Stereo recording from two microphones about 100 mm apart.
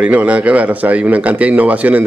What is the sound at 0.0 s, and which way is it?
Speech, 10° right (ahead or behind).